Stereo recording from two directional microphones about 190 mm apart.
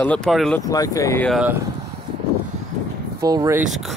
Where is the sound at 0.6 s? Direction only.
20° left (ahead or behind).